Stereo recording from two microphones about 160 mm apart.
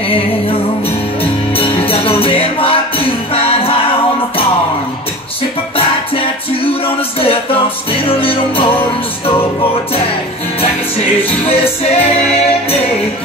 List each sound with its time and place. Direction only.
0.1 s music: 35° left (ahead or behind)
5.8 s music: 35° left (ahead or behind)
11.4 s music: 40° left (ahead or behind)